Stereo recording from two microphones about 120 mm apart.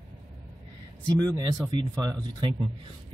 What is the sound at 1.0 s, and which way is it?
Speech, 35° right (ahead or behind).